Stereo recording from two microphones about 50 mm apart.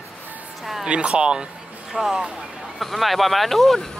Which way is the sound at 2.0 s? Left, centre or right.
Centre.